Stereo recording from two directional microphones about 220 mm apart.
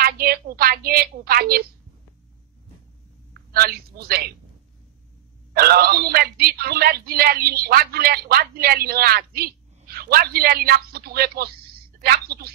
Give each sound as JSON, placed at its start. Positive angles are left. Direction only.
{"t": 0.0, "sound": "a woman's voice", "side_deg": -45}
{"t": 3.3, "sound": "a man's voice", "side_deg": -45}
{"t": 5.5, "sound": "speech", "side_deg": -45}